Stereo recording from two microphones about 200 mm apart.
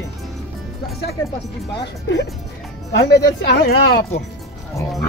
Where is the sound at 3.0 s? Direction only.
55° left (ahead or behind).